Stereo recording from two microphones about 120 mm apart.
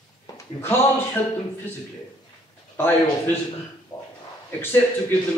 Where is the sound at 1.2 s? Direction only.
20° left (ahead or behind).